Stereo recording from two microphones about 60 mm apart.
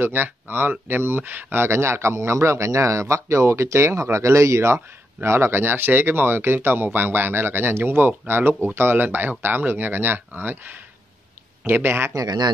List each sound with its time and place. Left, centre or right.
0.0 s speech: right